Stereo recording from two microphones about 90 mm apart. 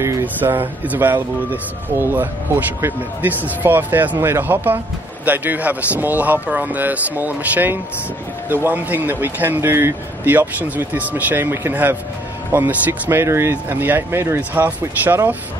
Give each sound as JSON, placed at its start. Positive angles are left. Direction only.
{"t": 0.2, "sound": "speech", "side_deg": -20}